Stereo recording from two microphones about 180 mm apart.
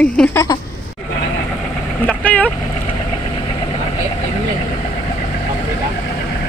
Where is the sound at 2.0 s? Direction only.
10° left (ahead or behind).